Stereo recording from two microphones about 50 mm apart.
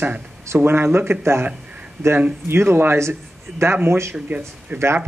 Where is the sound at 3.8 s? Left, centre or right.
Right.